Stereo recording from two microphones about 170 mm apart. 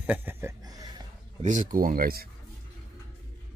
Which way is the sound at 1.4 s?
50° right (ahead or behind).